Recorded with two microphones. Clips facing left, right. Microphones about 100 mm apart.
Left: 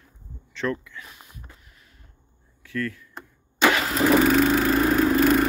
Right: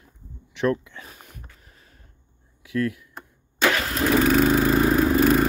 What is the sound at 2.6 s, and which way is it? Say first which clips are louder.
Speech: right 4 dB; 15° right (ahead or behind).